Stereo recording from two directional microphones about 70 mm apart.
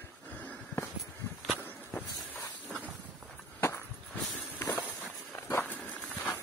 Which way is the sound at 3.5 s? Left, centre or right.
Left.